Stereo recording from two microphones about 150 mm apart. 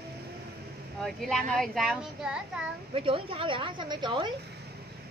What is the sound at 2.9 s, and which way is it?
A woman's voice, 35° right (ahead or behind).